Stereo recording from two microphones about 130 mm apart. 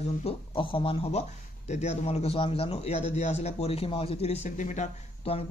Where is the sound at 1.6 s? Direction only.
60° left (ahead or behind).